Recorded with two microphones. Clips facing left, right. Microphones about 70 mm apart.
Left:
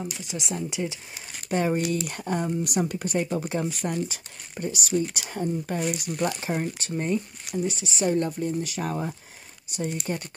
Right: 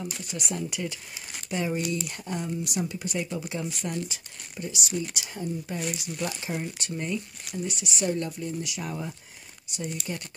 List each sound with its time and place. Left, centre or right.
0.0 s speech: left
1.5 s speech: left
8.3 s speech: left